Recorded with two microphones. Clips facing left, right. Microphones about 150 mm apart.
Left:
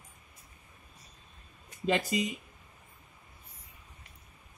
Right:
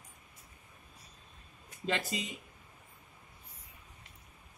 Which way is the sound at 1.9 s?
15° left (ahead or behind).